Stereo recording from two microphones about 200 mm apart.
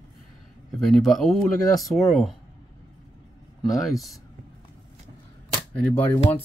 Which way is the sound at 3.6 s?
Centre (ahead or behind).